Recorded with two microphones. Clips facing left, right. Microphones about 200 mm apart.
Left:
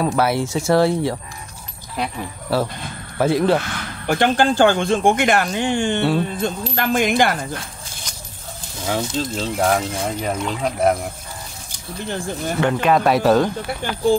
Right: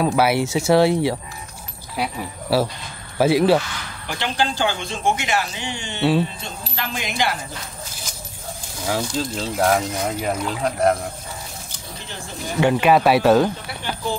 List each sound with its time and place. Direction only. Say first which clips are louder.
0.0 s speech: right 1 dB; centre (ahead or behind)
4.1 s speech: left 7 dB; 50° left (ahead or behind)
8.8 s speech: left 1 dB; 5° right (ahead or behind)
12.5 s speech: right 2 dB; 10° right (ahead or behind)